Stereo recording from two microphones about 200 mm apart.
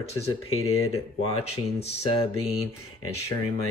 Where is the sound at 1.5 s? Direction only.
30° left (ahead or behind).